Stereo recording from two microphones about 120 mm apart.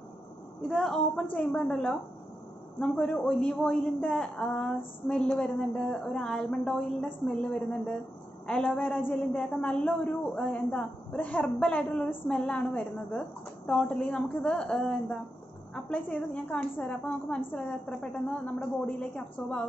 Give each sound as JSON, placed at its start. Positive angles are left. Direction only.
{"t": 0.6, "sound": "a woman's voice", "side_deg": 0}